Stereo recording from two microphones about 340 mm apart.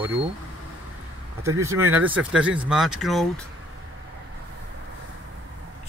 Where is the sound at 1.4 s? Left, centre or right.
Centre.